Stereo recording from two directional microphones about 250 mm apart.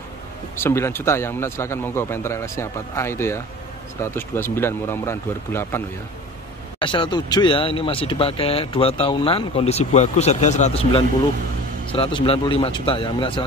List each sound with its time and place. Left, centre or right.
0.6 s a man's voice: centre
6.8 s speech: centre